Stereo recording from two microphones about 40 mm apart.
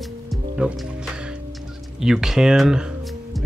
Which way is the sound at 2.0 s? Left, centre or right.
Centre.